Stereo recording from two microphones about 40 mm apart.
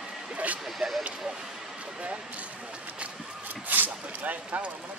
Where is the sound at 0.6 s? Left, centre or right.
Centre.